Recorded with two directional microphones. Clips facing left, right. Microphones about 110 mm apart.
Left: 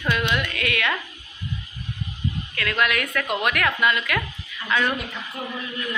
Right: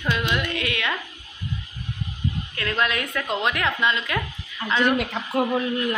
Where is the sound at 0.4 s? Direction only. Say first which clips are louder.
Left 1 dB; 25° right (ahead or behind).